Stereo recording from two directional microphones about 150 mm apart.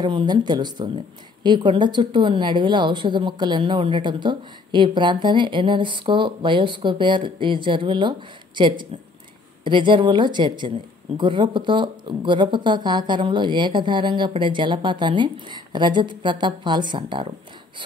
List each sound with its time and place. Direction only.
0.0 s a woman's voice: 30° right (ahead or behind)